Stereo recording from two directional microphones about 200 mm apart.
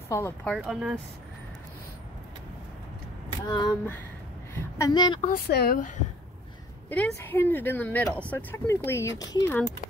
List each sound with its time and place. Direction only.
0.1 s speech: 10° left (ahead or behind)
0.6 s speech: 5° right (ahead or behind)
3.4 s a woman's voice: 20° left (ahead or behind)
5.3 s speech: 50° left (ahead or behind)
6.9 s speech: 5° left (ahead or behind)